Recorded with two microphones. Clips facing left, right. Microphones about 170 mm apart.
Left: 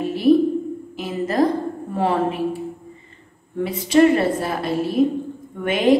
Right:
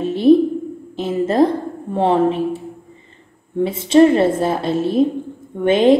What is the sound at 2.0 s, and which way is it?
A woman's voice, 25° right (ahead or behind).